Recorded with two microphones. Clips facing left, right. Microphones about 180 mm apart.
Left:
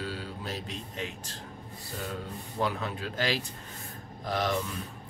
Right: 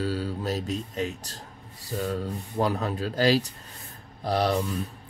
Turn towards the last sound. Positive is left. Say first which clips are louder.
# right 5 dB
turn(degrees=-35)  # may be behind; listen again after turning